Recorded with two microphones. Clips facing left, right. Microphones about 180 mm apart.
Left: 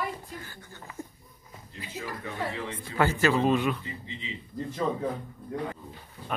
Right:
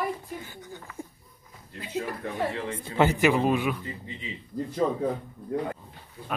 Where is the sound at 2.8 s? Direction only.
20° right (ahead or behind).